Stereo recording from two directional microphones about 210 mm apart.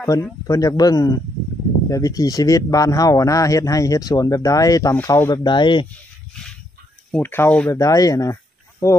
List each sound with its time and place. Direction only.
0.1 s speech: 15° left (ahead or behind)
7.1 s speech: 10° left (ahead or behind)